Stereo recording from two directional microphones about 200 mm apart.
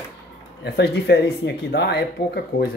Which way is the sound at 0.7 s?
55° left (ahead or behind).